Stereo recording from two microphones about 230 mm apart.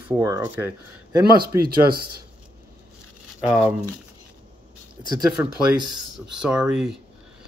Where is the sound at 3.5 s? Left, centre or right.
Centre.